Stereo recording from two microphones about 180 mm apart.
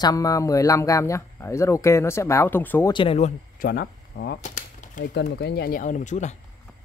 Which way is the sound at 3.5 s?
55° left (ahead or behind).